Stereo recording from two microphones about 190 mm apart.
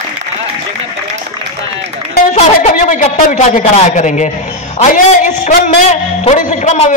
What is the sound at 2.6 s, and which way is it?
A woman's voice, 40° left (ahead or behind).